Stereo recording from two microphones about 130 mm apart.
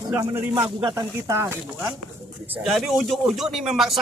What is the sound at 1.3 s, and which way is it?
Speech, 20° right (ahead or behind).